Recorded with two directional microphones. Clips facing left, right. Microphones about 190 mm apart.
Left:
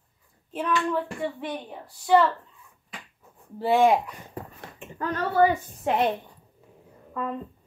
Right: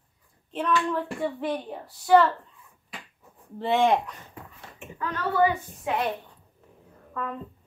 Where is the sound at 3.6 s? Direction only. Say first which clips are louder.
Left 2 dB; 5° left (ahead or behind).